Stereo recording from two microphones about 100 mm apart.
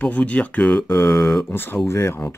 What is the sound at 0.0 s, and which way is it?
Speech, 15° left (ahead or behind).